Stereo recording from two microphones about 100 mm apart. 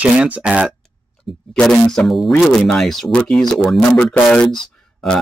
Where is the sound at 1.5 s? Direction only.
5° left (ahead or behind).